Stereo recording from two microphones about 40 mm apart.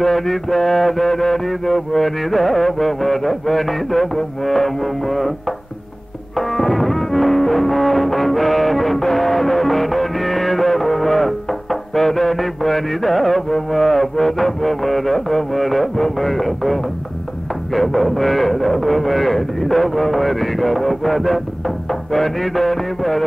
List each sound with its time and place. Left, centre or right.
0.0 s speech: centre
6.3 s music: centre
17.7 s speech: centre